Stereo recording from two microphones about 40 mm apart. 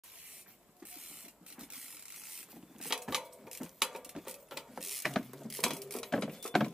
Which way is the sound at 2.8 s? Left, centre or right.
Centre.